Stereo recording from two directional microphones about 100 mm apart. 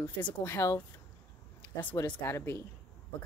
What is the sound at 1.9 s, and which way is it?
Speech, 45° left (ahead or behind).